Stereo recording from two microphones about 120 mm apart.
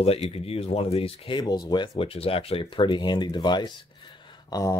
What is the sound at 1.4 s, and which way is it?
Speech, 30° left (ahead or behind).